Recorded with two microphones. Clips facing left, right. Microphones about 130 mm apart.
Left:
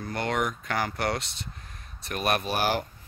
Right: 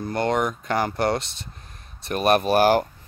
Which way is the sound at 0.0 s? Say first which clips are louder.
Right 6 dB; 30° right (ahead or behind).